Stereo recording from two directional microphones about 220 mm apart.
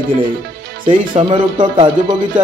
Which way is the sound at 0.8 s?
20° right (ahead or behind).